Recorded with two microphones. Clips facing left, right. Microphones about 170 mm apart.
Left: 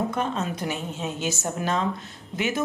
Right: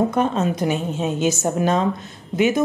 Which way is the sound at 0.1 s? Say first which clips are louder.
Right 7 dB; 20° right (ahead or behind).